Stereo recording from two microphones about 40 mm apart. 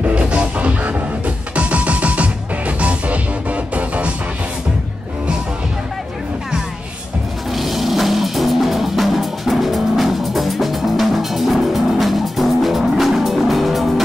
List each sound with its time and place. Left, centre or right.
0.0 s music: right
7.5 s music: centre